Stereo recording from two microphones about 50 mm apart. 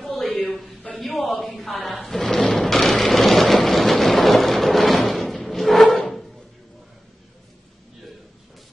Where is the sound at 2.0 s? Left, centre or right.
Centre.